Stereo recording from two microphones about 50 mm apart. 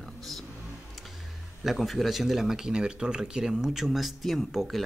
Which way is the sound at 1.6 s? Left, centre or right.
Centre.